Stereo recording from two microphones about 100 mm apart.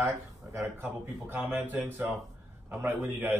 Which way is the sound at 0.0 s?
25° right (ahead or behind).